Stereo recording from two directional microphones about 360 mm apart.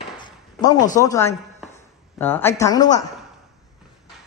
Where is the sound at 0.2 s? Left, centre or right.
Centre.